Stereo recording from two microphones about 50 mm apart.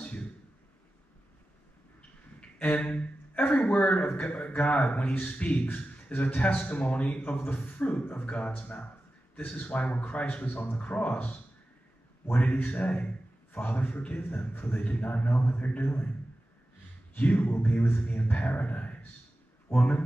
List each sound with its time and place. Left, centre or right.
2.8 s speech: left
12.4 s a man's voice: left
17.1 s a man's voice: left